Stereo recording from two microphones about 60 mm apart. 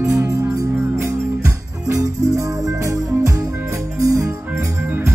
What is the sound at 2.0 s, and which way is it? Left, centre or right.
Music, right.